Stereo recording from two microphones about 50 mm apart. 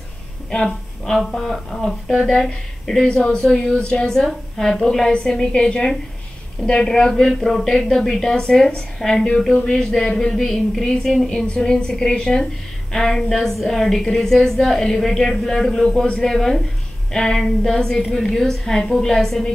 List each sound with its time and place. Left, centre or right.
0.7 s a woman's voice: centre
5.3 s a woman's voice: centre